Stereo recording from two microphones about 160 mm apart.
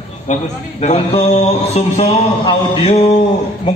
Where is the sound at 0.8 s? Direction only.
40° left (ahead or behind).